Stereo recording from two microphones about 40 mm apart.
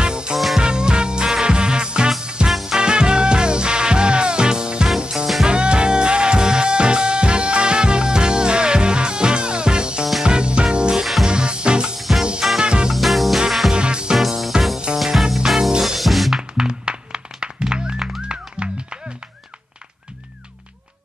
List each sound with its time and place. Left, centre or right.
0.0 s music: right
2.4 s music: centre
2.8 s music: right
5.1 s music: centre
5.5 s music: right
12.0 s music: centre
12.5 s music: right
12.9 s music: centre
13.7 s music: right
14.1 s music: centre
16.3 s music: centre